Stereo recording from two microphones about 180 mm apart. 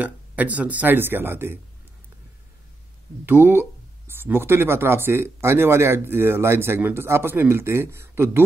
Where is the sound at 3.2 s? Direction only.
10° right (ahead or behind).